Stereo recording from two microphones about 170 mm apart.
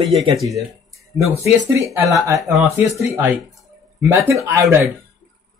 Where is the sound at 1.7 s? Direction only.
20° right (ahead or behind).